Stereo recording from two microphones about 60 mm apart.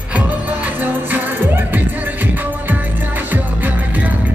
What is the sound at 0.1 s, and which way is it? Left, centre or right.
Music, right.